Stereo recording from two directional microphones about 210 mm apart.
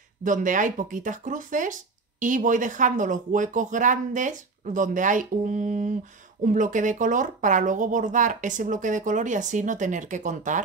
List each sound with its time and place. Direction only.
0.2 s speech: 40° right (ahead or behind)